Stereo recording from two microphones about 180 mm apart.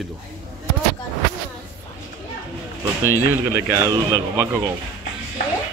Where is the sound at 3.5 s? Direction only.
15° right (ahead or behind).